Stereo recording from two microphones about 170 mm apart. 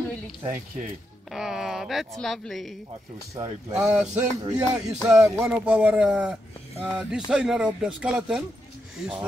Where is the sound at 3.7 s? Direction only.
5° right (ahead or behind).